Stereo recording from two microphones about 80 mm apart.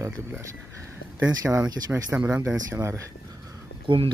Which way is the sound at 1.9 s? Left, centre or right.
Centre.